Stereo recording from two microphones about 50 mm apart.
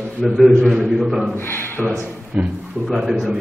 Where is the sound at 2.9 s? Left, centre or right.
Centre.